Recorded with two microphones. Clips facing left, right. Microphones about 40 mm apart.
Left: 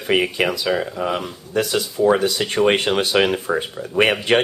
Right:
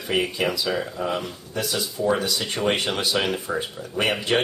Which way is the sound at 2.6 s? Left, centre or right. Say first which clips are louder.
Left 6 dB; left.